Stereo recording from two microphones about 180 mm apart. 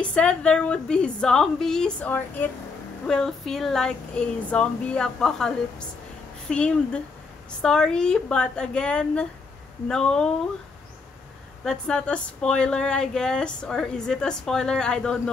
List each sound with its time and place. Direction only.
0.0 s speech: 5° left (ahead or behind)
11.6 s speech: 5° left (ahead or behind)